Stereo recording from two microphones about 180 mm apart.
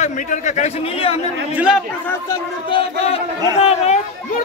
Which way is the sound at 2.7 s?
30° left (ahead or behind).